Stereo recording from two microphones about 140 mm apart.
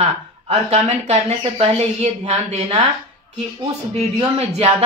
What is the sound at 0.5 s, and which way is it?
Speech, 50° right (ahead or behind).